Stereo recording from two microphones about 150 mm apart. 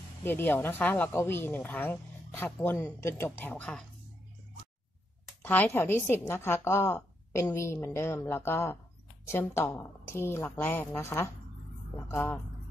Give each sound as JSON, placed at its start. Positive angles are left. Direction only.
{"t": 0.2, "sound": "speech", "side_deg": 15}
{"t": 5.4, "sound": "speech", "side_deg": 10}